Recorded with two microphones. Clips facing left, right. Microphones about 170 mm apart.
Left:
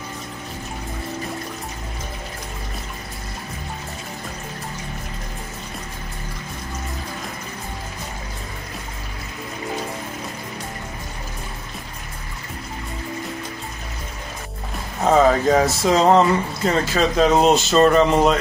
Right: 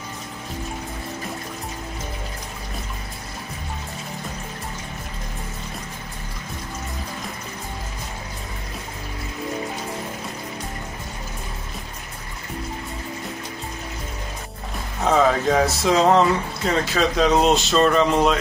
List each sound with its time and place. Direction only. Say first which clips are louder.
15.0 s speech: left 3 dB; centre (ahead or behind)